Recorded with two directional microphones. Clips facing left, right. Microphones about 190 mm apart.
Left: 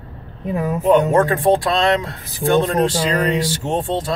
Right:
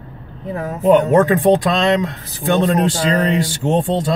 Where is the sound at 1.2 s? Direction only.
20° right (ahead or behind).